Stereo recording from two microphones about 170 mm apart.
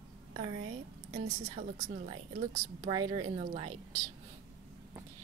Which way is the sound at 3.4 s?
40° right (ahead or behind).